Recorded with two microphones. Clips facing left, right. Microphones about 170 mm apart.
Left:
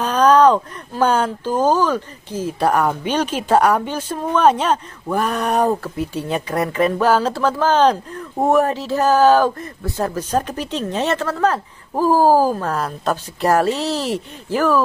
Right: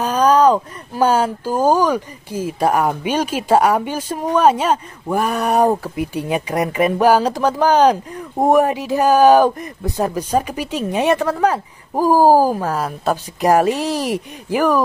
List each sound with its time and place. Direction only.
0.0 s speech: 10° right (ahead or behind)